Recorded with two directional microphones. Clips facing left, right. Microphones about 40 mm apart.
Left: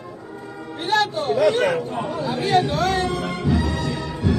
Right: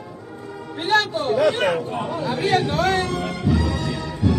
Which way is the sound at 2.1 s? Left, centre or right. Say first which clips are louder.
Left 1 dB; right.